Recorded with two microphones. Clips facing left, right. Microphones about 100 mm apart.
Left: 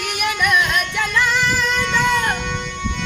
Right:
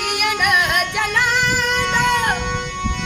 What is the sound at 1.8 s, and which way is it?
Baby cry, 20° right (ahead or behind).